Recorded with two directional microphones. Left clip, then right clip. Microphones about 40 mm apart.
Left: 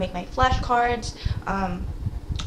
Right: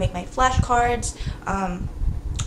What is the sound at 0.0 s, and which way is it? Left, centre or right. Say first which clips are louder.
A woman's voice: right 1 dB; right.